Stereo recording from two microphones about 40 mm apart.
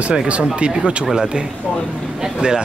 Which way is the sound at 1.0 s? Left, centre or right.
Centre.